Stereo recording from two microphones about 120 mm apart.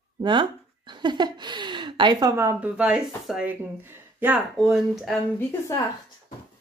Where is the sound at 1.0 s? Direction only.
40° right (ahead or behind).